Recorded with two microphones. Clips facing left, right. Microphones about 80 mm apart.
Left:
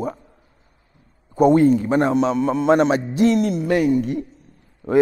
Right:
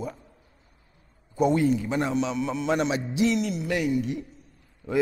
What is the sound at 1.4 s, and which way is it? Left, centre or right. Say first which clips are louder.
Speech: left 8 dB; left.